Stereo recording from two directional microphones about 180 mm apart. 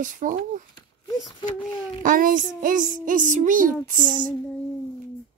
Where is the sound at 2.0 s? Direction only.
50° right (ahead or behind).